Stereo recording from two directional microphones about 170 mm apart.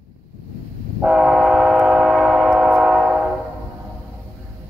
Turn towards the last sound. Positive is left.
turn(degrees=0)  # may be behind; listen again after turning